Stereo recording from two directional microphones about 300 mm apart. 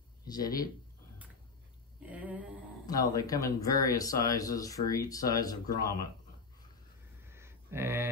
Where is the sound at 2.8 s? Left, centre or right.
Centre.